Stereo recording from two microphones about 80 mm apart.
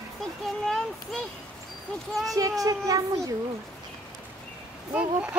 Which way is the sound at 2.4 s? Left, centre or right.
Right.